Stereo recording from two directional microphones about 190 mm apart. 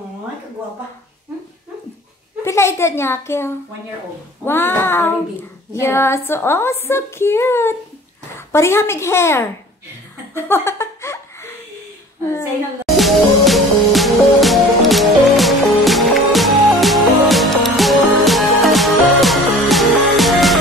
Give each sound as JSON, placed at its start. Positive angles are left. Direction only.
{"t": 2.4, "sound": "a woman's voice", "side_deg": 15}
{"t": 10.3, "sound": "laughter", "side_deg": 10}
{"t": 12.8, "sound": "music", "side_deg": 0}